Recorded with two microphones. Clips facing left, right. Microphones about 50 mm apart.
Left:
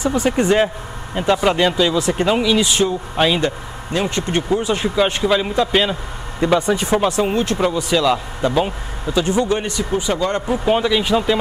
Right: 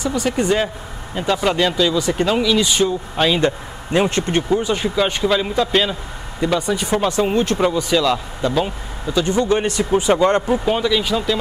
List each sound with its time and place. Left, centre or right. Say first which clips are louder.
0.0 s speech: left 2 dB; left
3.3 s speech: right 2 dB; centre
4.4 s speech: left 1 dB; centre
7.2 s speech: right 1 dB; centre
9.5 s speech: right 3 dB; centre
10.6 s speech: left 1 dB; centre